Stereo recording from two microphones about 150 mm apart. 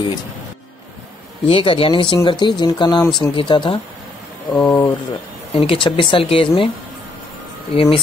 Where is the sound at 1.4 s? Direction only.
35° left (ahead or behind).